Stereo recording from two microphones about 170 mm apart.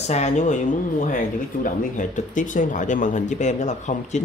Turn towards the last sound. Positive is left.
turn(degrees=45)  # may be behind; listen again after turning